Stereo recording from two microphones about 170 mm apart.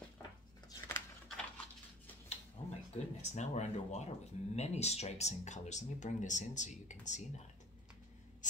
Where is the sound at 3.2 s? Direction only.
45° left (ahead or behind).